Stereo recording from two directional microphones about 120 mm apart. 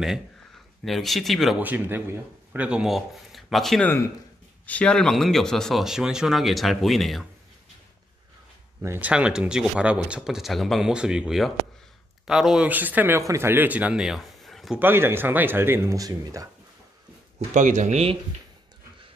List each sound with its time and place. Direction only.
0.8 s speech: centre (ahead or behind)
1.6 s speech: 15° right (ahead or behind); by 7.2 s centre (ahead or behind)
8.8 s speech: 20° right (ahead or behind)
9.1 s speech: 10° right (ahead or behind)
14.8 s speech: 20° right (ahead or behind)
17.4 s speech: 85° right